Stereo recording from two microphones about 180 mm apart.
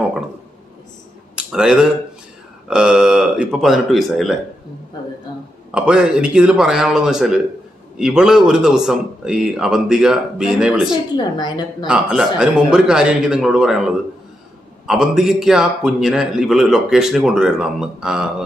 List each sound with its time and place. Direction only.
1.3 s a man's voice: 5° right (ahead or behind)
5.7 s a man's voice: 5° right (ahead or behind)
11.1 s a woman's voice: 25° left (ahead or behind)
11.8 s a man's voice: 5° right (ahead or behind)